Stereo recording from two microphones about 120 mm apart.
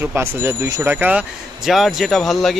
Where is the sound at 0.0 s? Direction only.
20° right (ahead or behind).